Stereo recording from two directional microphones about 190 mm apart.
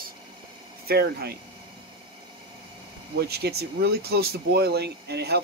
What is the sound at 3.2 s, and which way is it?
Speech, 55° right (ahead or behind).